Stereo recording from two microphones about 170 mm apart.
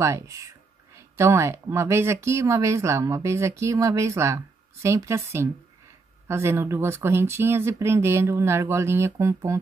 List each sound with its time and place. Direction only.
0.0 s speech: 20° right (ahead or behind)